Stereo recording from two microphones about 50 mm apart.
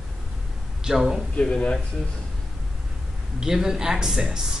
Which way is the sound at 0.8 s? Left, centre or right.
Centre.